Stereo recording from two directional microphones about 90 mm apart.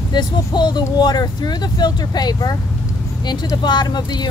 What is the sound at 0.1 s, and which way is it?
Speech, 55° left (ahead or behind).